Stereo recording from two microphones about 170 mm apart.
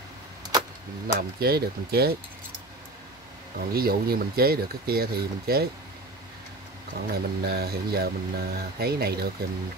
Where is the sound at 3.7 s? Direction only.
60° right (ahead or behind).